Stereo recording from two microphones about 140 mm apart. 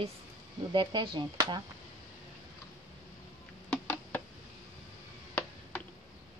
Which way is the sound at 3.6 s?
10° left (ahead or behind).